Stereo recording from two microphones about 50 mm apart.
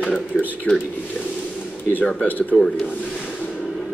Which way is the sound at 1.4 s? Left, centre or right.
Left.